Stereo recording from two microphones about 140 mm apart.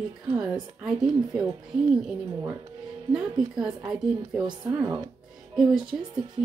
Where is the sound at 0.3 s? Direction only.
30° right (ahead or behind).